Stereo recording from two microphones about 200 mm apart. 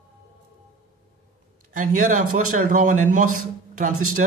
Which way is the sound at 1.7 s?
40° right (ahead or behind).